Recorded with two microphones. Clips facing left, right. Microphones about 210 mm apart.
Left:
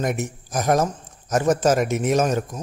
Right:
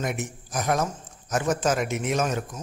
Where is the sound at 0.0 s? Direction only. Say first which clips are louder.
Left 5 dB; 45° left (ahead or behind).